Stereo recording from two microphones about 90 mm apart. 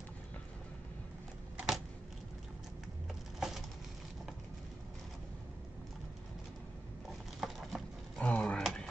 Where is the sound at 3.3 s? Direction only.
5° right (ahead or behind).